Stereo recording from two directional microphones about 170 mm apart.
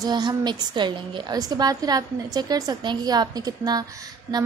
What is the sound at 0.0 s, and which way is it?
A woman's voice, 25° right (ahead or behind).